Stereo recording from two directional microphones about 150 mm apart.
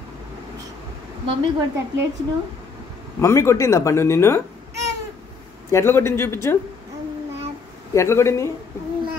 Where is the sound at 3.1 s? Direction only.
20° left (ahead or behind).